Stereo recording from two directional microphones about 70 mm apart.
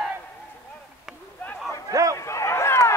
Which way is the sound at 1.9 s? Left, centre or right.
Right.